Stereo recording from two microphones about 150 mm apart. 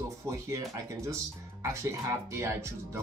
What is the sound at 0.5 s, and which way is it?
Speech, 20° right (ahead or behind).